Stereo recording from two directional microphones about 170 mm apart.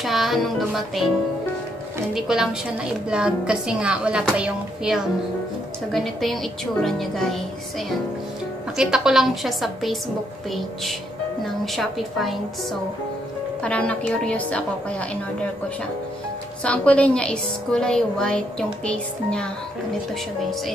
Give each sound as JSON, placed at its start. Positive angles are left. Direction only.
{"t": 0.0, "sound": "a woman's voice", "side_deg": 0}
{"t": 2.1, "sound": "a woman's voice", "side_deg": 0}
{"t": 8.7, "sound": "a woman's voice", "side_deg": -5}
{"t": 13.6, "sound": "a woman's voice", "side_deg": 5}
{"t": 16.6, "sound": "a woman's voice", "side_deg": 5}